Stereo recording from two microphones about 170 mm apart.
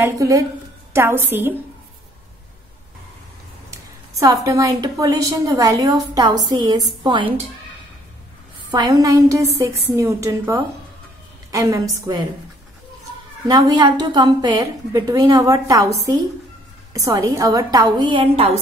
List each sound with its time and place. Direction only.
0.0 s a woman's voice: 20° right (ahead or behind)
4.2 s a woman's voice: 20° right (ahead or behind)
8.6 s a woman's voice: 25° right (ahead or behind)
13.5 s a woman's voice: 20° right (ahead or behind)
16.9 s a woman's voice: 20° right (ahead or behind); by 18.6 s 35° right (ahead or behind)